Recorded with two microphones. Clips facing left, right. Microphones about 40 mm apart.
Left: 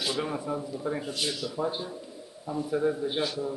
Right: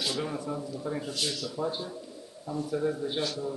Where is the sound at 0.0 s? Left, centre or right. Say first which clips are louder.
Left 2 dB; centre.